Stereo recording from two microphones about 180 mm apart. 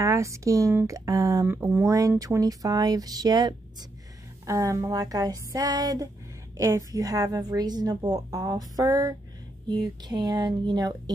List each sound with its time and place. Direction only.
0.0 s a woman's voice: 15° right (ahead or behind)